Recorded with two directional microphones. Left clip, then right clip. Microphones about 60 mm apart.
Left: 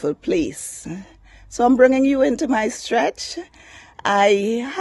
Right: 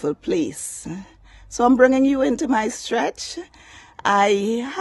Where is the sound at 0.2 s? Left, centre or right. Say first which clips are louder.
Left 2 dB; left.